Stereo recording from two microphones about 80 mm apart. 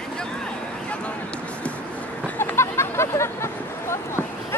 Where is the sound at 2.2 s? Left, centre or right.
Left.